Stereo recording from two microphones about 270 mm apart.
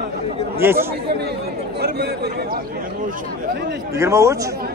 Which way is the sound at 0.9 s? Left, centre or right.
Right.